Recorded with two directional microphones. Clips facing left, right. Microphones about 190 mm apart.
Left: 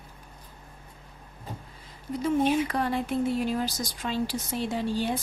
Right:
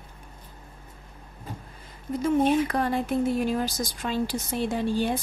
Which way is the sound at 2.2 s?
45° right (ahead or behind).